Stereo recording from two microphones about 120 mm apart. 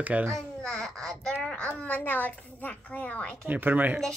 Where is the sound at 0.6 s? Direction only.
5° left (ahead or behind).